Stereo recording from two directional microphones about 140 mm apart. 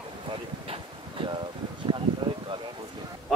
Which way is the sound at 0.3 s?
40° right (ahead or behind).